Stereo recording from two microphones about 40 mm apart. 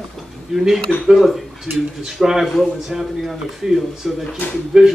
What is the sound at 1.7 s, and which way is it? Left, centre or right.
Cutlery, right.